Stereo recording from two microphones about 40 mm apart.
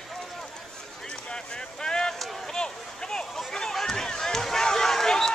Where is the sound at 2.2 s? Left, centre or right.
Centre.